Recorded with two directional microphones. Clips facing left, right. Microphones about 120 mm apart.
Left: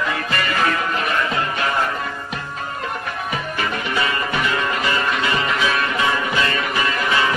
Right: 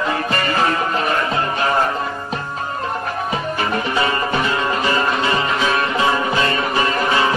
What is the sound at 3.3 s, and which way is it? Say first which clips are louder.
Music: right 2 dB; 30° right (ahead or behind).